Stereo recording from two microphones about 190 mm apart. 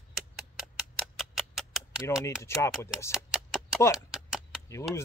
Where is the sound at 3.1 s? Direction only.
5° right (ahead or behind).